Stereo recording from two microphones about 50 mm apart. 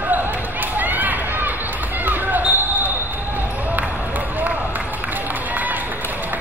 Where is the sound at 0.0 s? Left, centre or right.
Right.